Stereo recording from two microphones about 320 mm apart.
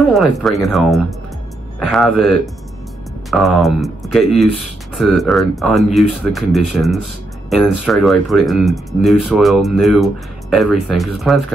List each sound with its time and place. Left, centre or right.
0.1 s speech: centre